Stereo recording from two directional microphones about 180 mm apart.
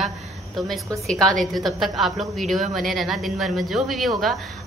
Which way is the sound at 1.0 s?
Centre (ahead or behind).